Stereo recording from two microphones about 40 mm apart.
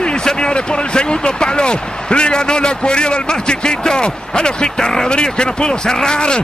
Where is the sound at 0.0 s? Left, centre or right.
Left.